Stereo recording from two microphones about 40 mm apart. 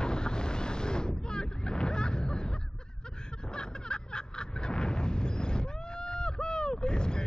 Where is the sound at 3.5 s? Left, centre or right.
Left.